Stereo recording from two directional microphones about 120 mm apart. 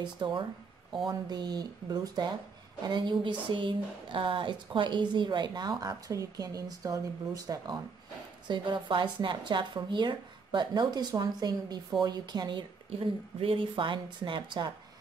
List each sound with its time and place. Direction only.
0.0 s speech: 40° right (ahead or behind)